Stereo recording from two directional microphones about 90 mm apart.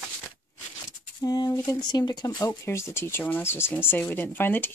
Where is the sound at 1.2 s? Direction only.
45° left (ahead or behind).